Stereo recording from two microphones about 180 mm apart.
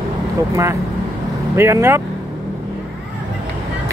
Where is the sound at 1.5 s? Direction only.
15° right (ahead or behind).